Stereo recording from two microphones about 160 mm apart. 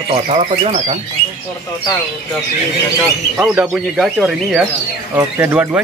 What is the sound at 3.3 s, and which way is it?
Speech, 5° right (ahead or behind).